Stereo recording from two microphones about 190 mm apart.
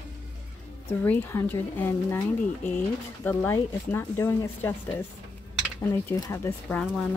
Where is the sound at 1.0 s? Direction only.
10° left (ahead or behind).